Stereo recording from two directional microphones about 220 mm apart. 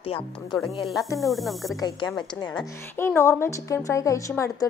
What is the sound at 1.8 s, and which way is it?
A woman's voice, 15° left (ahead or behind).